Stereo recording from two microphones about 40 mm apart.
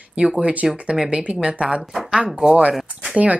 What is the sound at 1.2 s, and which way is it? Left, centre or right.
Speech, right.